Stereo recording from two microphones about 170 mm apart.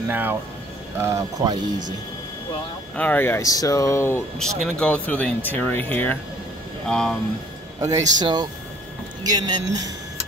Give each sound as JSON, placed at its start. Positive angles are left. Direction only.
{"t": 0.1, "sound": "speech", "side_deg": -10}
{"t": 3.0, "sound": "speech", "side_deg": 10}
{"t": 4.4, "sound": "speech", "side_deg": 5}
{"t": 7.8, "sound": "speech", "side_deg": -20}